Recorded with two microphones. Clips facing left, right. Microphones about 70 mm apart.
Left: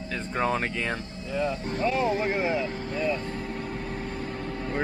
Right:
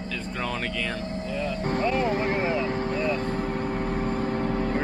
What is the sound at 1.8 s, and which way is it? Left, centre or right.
Speech, centre.